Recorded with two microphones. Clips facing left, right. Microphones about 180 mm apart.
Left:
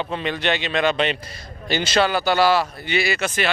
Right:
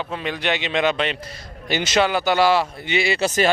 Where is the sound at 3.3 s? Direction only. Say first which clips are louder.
Right 5 dB; 40° right (ahead or behind).